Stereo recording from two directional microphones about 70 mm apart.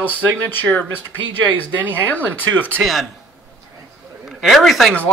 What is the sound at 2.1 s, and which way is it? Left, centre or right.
Speech, left.